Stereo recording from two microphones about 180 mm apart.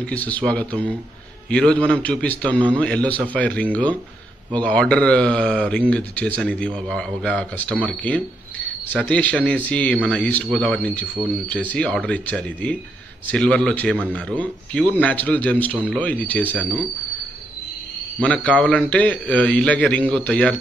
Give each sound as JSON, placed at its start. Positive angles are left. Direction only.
{"t": 0.0, "sound": "a man's voice", "side_deg": 10}
{"t": 18.2, "sound": "speech", "side_deg": 5}